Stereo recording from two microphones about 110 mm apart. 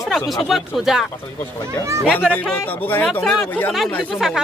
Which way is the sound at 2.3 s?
15° left (ahead or behind).